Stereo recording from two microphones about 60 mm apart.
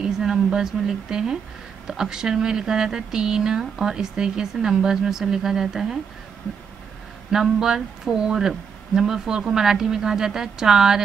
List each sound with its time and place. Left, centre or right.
0.0 s speech: centre
7.2 s speech: centre